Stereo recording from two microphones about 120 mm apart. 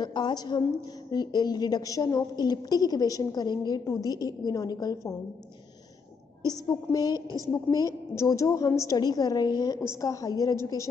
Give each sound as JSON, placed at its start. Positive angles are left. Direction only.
{"t": 0.0, "sound": "a woman's voice", "side_deg": 40}
{"t": 6.4, "sound": "a woman's voice", "side_deg": 35}